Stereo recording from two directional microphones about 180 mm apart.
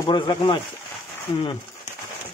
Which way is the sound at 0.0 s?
25° left (ahead or behind).